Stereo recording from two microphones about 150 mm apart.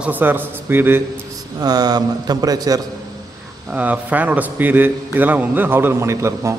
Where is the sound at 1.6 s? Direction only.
25° right (ahead or behind).